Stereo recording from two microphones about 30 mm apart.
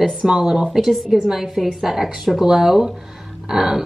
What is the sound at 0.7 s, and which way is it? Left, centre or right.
Speech, centre.